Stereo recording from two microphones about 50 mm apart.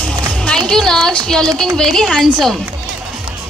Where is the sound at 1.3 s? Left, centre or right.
Centre.